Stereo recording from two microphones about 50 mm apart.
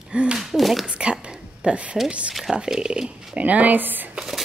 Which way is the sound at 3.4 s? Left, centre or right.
Right.